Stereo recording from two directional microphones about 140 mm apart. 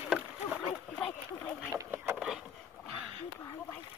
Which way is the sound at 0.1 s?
5° right (ahead or behind).